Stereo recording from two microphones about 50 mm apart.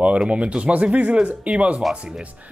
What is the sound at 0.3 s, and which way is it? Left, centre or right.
Speech, right.